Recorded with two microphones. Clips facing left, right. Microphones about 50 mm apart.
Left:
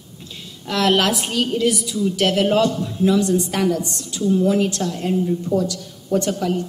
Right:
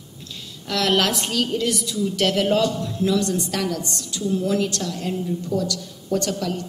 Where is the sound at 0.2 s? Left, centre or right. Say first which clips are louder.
Left 1 dB; centre.